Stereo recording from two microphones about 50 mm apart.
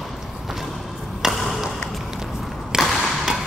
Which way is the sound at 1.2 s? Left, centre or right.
Centre.